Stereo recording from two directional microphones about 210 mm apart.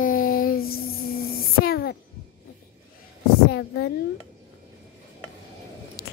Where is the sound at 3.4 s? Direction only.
50° left (ahead or behind).